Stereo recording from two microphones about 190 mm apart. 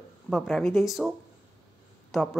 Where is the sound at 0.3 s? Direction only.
Centre (ahead or behind).